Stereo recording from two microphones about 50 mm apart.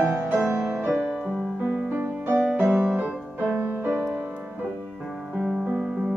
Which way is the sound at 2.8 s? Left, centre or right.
Right.